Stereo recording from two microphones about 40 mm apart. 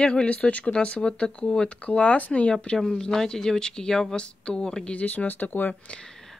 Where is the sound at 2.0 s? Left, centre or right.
Left.